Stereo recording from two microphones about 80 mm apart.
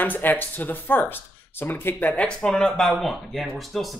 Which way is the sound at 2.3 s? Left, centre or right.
Centre.